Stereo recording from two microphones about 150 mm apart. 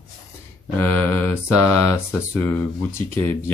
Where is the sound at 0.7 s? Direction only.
15° left (ahead or behind).